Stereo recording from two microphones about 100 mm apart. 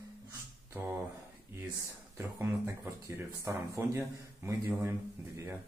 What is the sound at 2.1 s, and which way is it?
Speech, 25° right (ahead or behind).